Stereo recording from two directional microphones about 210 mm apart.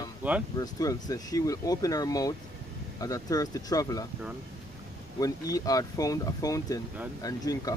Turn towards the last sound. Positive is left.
turn(degrees=15)  # may be behind; listen again after turning